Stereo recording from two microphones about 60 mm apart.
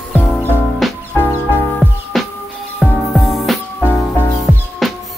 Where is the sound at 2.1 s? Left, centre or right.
Centre.